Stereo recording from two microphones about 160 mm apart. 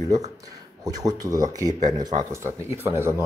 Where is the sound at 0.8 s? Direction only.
20° right (ahead or behind).